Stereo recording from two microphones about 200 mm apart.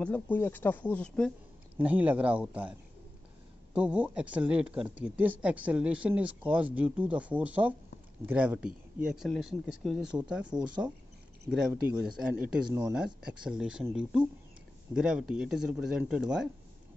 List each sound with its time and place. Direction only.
0.0 s speech: 10° left (ahead or behind)
1.8 s speech: 10° right (ahead or behind)
12.6 s speech: 20° right (ahead or behind)
12.9 s speech: 5° right (ahead or behind)